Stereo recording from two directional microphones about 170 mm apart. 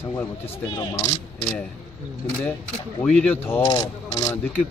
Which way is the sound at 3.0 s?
10° left (ahead or behind).